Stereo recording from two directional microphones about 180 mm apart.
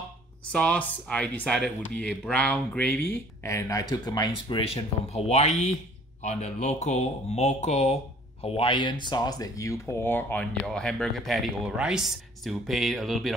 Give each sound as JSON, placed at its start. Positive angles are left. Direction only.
{"t": 0.5, "sound": "speech", "side_deg": 5}